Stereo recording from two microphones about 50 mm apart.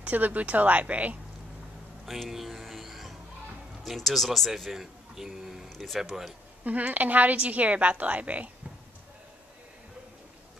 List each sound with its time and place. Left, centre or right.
0.0 s a woman's voice: right
2.0 s music: centre
3.8 s speech: centre
6.6 s a woman's voice: right